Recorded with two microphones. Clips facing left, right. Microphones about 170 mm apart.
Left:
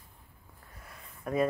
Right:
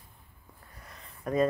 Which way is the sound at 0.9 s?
5° left (ahead or behind).